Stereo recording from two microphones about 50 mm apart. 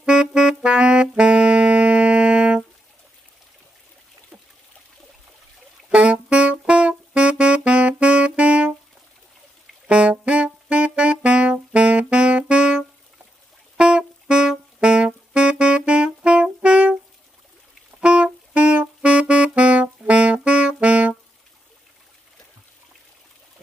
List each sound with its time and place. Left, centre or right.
0.0 s music: centre
0.7 s saxophone: right
5.9 s music: right
9.8 s music: right
10.2 s saxophone: right
13.7 s music: centre
18.0 s music: right
19.0 s saxophone: right